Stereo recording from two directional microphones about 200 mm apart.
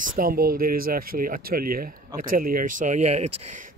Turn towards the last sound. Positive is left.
turn(degrees=-35)  # may be behind; listen again after turning